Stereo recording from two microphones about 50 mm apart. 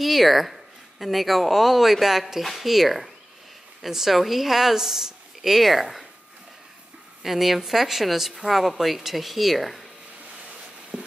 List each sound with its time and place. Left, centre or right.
0.0 s speech: centre
7.2 s speech: centre
10.9 s a sound: right